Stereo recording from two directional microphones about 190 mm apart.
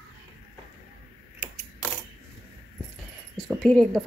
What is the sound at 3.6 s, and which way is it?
Speech, centre (ahead or behind).